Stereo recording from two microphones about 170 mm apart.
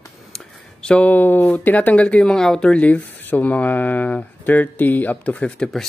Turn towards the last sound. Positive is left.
turn(degrees=5)  # may be behind; listen again after turning